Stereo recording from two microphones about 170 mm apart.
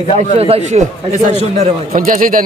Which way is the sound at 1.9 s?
55° right (ahead or behind).